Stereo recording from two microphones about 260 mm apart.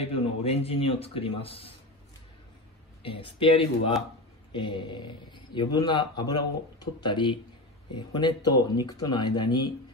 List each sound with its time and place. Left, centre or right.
0.0 s a man's voice: left
3.0 s a man's voice: centre